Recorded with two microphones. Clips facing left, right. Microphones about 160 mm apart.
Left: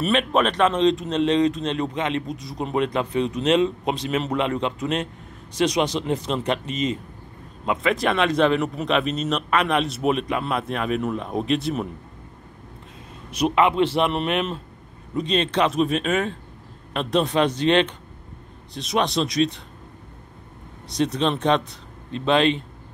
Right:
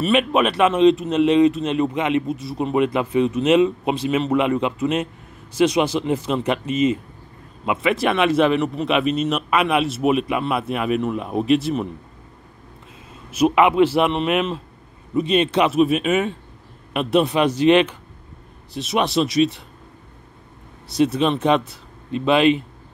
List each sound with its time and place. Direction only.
0.0 s speech: 5° right (ahead or behind)
13.3 s speech: 10° right (ahead or behind)
20.9 s speech: 5° right (ahead or behind)